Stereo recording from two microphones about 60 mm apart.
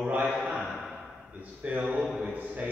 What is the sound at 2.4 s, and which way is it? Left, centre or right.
Speech, right.